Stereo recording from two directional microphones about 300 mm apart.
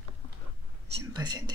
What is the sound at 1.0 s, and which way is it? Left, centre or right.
Speech, centre.